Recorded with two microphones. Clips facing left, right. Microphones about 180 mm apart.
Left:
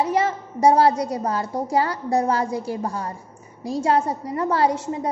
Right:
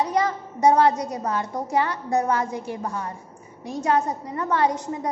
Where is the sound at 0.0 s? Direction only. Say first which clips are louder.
Left 2 dB; 25° left (ahead or behind).